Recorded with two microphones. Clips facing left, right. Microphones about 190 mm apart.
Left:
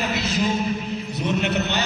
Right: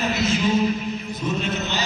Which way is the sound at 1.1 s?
65° left (ahead or behind).